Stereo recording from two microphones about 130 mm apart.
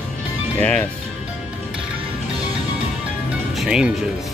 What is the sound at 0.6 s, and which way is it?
Speech, 10° left (ahead or behind).